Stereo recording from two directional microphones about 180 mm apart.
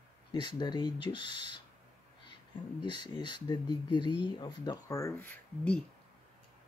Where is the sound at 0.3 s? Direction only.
25° left (ahead or behind).